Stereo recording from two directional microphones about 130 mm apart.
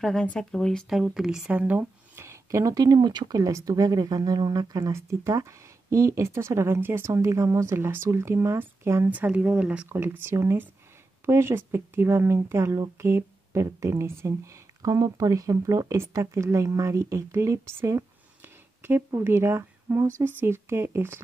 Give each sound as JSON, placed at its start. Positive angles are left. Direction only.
{"t": 0.0, "sound": "speech", "side_deg": 5}